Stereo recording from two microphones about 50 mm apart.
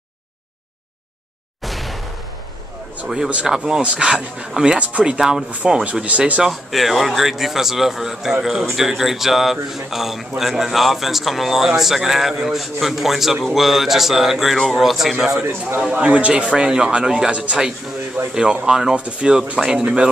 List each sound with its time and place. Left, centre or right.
1.6 s a sound: centre
3.4 s speech: centre
6.0 s speech: right
6.5 s a man's voice: centre
15.9 s speech: right; by 18.9 s centre
18.9 s speech: right